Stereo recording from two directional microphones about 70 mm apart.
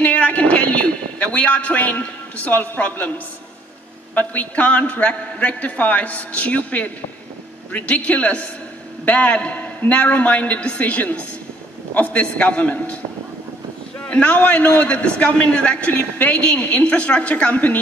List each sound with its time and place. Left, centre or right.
0.0 s a man's voice: centre
14.0 s a man's voice: centre